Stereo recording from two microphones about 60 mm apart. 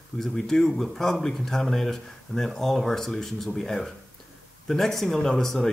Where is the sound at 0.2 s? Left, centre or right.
Centre.